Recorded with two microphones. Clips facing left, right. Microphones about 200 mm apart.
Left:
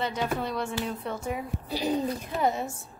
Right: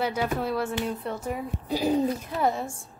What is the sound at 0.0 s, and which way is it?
A woman's voice, 10° right (ahead or behind).